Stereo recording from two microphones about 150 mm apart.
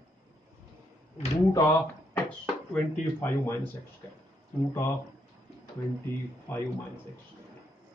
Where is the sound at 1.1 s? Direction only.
45° left (ahead or behind).